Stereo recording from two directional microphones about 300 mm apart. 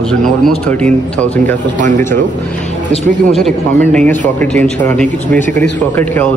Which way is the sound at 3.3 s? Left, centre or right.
Centre.